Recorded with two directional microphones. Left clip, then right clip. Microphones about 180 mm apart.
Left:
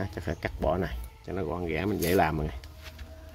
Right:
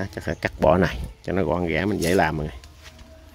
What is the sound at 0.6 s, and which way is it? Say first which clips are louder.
Speech: right 12 dB; 40° right (ahead or behind).